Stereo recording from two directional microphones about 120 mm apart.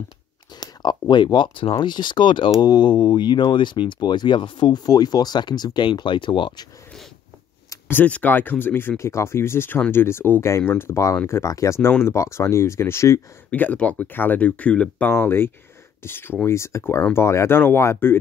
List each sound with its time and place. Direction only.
0.6 s speech: 35° left (ahead or behind)
7.9 s speech: 15° left (ahead or behind)
13.5 s speech: 10° left (ahead or behind)